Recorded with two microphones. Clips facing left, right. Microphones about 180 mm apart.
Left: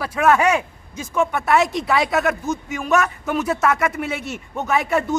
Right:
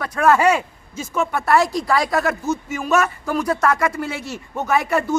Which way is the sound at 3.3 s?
5° left (ahead or behind).